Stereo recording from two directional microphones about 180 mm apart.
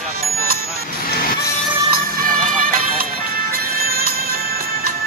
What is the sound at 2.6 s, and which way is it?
Music, 50° right (ahead or behind).